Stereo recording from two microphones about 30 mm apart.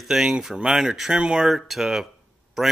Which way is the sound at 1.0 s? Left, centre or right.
Right.